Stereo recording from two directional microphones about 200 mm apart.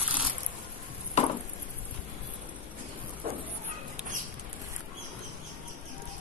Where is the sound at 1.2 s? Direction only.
35° left (ahead or behind).